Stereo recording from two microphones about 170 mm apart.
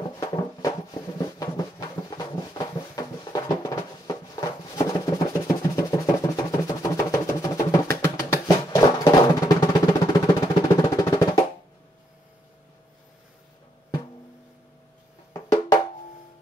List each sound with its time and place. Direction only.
0.2 s a sound: 20° left (ahead or behind)
8.7 s music: 20° left (ahead or behind)
15.3 s music: 20° left (ahead or behind)